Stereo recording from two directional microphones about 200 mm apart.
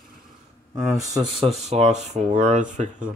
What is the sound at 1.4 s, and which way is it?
Speech, 30° right (ahead or behind).